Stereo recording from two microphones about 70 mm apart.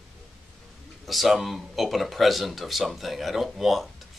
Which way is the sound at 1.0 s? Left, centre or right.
Centre.